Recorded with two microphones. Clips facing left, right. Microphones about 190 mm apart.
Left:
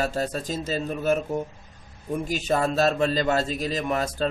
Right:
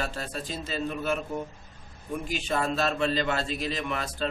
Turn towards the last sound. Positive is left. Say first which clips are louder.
# left 6 dB
turn(degrees=40)  # may be behind; listen again after turning